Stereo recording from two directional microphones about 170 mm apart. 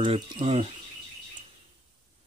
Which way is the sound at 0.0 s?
30° right (ahead or behind).